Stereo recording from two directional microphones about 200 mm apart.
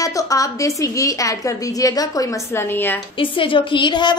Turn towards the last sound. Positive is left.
turn(degrees=20)  # may be behind; listen again after turning